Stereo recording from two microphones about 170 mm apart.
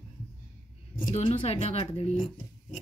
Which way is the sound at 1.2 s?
35° left (ahead or behind).